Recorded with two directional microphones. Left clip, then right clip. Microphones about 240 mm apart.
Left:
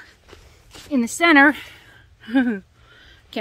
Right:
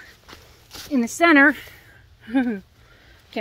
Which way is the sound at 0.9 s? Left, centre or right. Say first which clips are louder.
Left 1 dB; centre.